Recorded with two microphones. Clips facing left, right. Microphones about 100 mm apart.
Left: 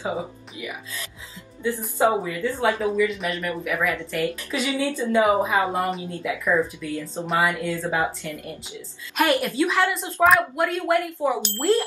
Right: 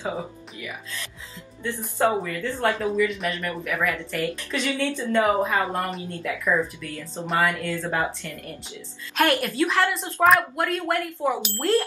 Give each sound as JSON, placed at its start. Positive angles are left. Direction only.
{"t": 0.0, "sound": "a woman's voice", "side_deg": 15}
{"t": 3.3, "sound": "a woman's voice", "side_deg": 15}
{"t": 9.1, "sound": "a woman's voice", "side_deg": 5}